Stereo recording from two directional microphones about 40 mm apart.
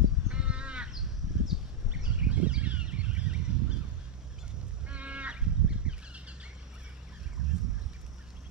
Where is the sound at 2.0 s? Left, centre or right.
Right.